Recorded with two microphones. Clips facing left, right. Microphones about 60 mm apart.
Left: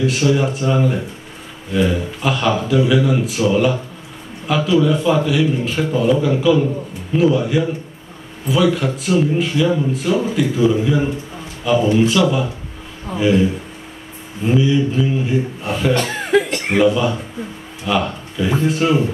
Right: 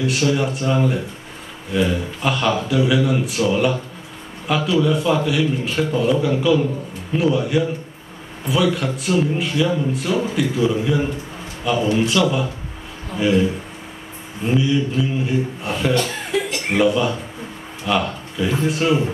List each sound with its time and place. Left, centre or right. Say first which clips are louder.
0.0 s a man's voice: left 3 dB; centre
15.9 s chuckle: left 6 dB; left
16.7 s a man's voice: left 2 dB; centre